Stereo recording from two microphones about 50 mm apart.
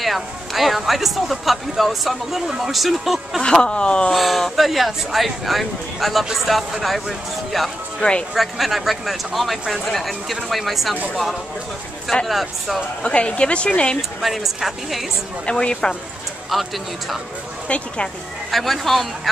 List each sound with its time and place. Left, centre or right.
0.0 s speech: centre
3.4 s speech: centre
4.1 s speech: centre
12.3 s speech: centre
13.0 s speech: left
14.2 s speech: centre
15.4 s speech: centre
16.4 s speech: centre
17.6 s speech: left
18.5 s speech: centre